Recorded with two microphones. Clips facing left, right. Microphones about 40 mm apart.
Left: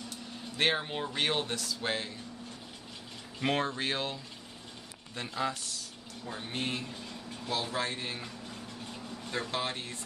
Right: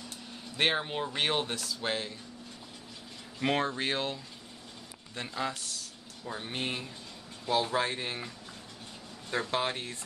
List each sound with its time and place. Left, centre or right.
0.6 s speech: centre
3.3 s speech: centre
6.2 s speech: centre
9.5 s speech: right